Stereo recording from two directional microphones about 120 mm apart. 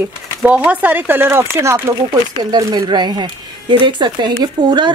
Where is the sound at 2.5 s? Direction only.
35° right (ahead or behind).